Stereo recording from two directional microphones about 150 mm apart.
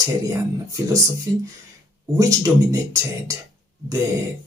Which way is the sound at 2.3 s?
20° right (ahead or behind).